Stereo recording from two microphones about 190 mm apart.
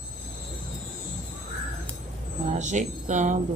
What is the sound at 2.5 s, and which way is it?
Speech, 40° right (ahead or behind).